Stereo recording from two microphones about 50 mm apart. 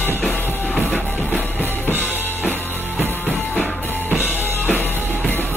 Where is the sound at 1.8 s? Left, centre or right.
Left.